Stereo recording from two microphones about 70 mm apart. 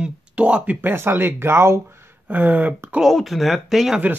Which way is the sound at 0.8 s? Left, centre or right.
Right.